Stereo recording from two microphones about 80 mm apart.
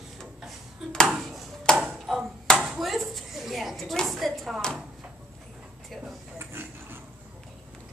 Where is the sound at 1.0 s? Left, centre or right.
Centre.